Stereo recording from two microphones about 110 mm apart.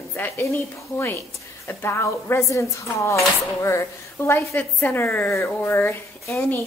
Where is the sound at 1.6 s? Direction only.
25° left (ahead or behind).